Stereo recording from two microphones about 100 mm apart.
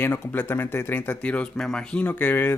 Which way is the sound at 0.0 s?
20° left (ahead or behind).